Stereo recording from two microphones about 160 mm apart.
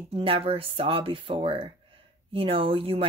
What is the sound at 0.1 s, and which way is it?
Speech, 35° right (ahead or behind).